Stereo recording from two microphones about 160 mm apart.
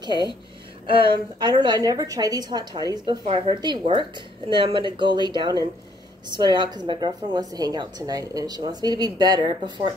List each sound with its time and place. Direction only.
0.1 s speech: 25° left (ahead or behind)
0.8 s a woman's voice: 30° right (ahead or behind)